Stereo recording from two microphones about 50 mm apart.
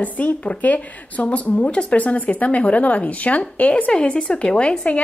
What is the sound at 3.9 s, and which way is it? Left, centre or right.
A woman's voice, centre.